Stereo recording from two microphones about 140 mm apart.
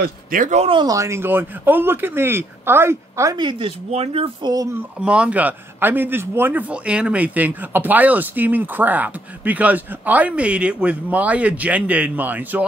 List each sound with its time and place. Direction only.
0.0 s speech: 75° right (ahead or behind)
0.6 s speech: 40° right (ahead or behind)
0.8 s speech: 20° right (ahead or behind); by 4.5 s 45° right (ahead or behind)
5.0 s a man's voice: 10° right (ahead or behind)